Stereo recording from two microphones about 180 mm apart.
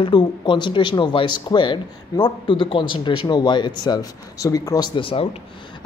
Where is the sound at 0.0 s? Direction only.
25° left (ahead or behind).